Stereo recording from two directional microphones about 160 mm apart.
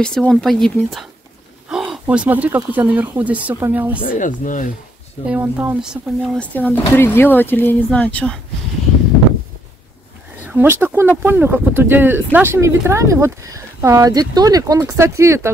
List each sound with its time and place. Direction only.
0.0 s speech: 5° left (ahead or behind)
4.2 s speech: 55° left (ahead or behind)
5.2 s speech: 10° right (ahead or behind); by 8.4 s 10° left (ahead or behind)
10.4 s speech: 10° right (ahead or behind)